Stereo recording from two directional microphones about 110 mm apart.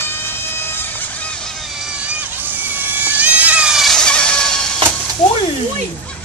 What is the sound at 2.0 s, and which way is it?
Vehicle, 15° right (ahead or behind).